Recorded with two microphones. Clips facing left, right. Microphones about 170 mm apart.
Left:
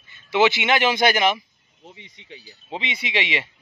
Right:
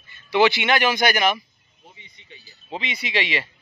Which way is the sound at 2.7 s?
25° left (ahead or behind).